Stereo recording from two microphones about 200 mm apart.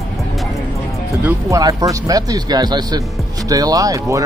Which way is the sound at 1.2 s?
15° right (ahead or behind).